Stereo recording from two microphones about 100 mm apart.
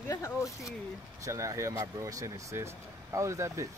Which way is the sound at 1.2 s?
30° right (ahead or behind).